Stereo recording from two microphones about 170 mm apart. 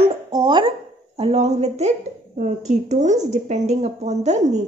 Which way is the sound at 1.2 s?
40° right (ahead or behind).